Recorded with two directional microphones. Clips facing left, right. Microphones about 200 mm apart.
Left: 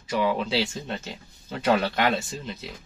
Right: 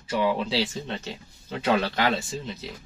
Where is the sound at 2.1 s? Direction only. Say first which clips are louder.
Even; centre (ahead or behind).